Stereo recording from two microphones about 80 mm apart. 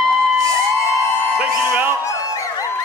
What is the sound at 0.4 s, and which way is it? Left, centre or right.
Music, right.